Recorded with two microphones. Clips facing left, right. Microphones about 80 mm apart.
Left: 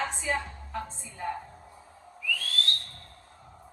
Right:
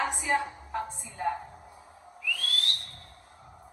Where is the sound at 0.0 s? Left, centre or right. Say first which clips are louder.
Right 3 dB; right.